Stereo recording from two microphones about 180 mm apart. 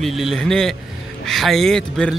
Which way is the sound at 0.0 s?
Centre (ahead or behind).